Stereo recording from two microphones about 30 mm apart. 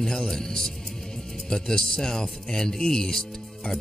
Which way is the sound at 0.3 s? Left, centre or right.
Centre.